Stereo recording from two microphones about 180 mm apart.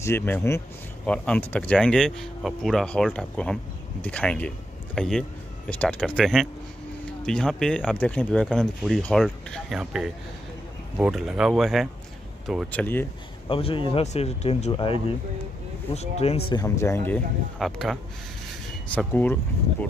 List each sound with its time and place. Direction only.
0.0 s speech: 15° left (ahead or behind)
12.7 s speech: 10° left (ahead or behind)
13.5 s speech: 30° left (ahead or behind); by 17.2 s 15° left (ahead or behind)
17.6 s speech: centre (ahead or behind)
18.9 s speech: 10° left (ahead or behind)